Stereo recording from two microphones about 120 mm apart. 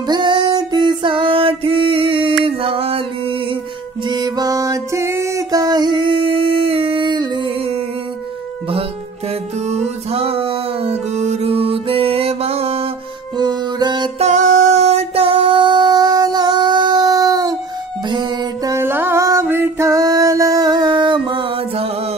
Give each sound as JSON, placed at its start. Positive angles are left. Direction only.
{"t": 0.0, "sound": "music", "side_deg": -40}
{"t": 4.1, "sound": "music", "side_deg": -35}
{"t": 9.7, "sound": "music", "side_deg": -55}
{"t": 13.4, "sound": "music", "side_deg": -35}
{"t": 14.1, "sound": "music", "side_deg": -75}